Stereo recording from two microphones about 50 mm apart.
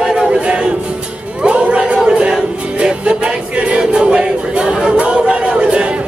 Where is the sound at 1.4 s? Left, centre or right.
Right.